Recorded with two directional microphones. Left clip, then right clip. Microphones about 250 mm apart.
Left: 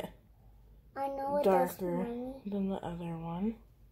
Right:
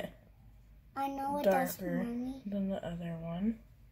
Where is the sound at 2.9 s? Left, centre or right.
Left.